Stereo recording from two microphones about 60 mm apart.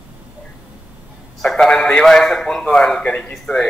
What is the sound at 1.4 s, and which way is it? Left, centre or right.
A man's voice, centre.